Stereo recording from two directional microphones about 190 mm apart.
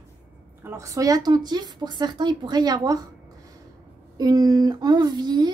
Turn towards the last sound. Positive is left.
turn(degrees=-20)  # may be behind; listen again after turning